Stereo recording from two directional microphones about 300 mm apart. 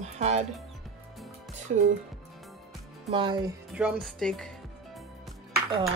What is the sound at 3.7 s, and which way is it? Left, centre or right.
Music, centre.